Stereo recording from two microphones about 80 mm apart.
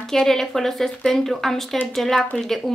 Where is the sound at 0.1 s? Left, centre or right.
Centre.